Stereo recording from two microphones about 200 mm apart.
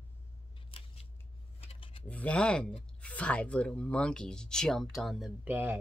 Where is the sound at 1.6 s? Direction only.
30° left (ahead or behind).